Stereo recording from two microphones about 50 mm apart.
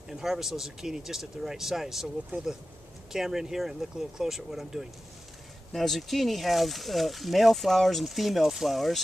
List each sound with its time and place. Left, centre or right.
0.1 s speech: centre
2.3 s speech: right
3.1 s speech: centre